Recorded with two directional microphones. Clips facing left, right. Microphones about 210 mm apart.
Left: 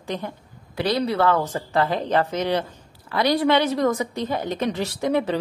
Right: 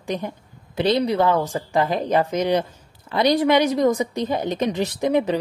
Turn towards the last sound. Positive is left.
turn(degrees=-15)  # may be behind; listen again after turning